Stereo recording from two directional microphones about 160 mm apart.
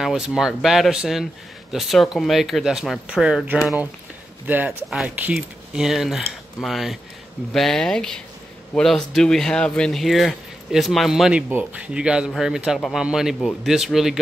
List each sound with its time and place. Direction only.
0.0 s speech: 5° right (ahead or behind)